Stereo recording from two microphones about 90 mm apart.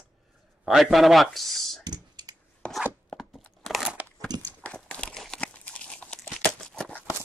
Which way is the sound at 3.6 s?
Centre (ahead or behind).